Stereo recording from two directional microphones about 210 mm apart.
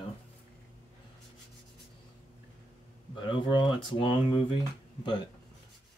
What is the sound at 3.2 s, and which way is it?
Speech, 20° left (ahead or behind).